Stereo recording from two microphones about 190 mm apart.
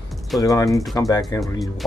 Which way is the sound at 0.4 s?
15° left (ahead or behind).